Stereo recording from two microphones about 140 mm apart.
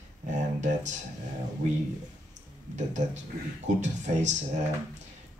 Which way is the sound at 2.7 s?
60° right (ahead or behind).